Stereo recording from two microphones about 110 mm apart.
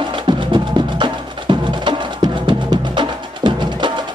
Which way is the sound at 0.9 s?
45° right (ahead or behind).